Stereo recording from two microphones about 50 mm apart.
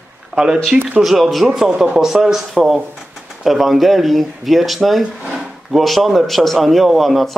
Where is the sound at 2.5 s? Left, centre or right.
Centre.